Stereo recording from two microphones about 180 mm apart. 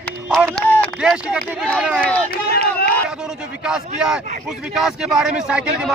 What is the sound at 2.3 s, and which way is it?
Run, 60° left (ahead or behind).